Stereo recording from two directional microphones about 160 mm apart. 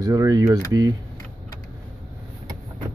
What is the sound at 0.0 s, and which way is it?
Speech, 20° right (ahead or behind).